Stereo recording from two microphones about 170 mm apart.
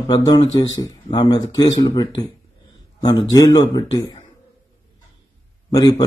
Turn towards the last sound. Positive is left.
turn(degrees=20)  # may be behind; listen again after turning